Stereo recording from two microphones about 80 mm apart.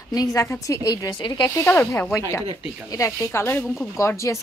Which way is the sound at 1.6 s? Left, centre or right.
Left.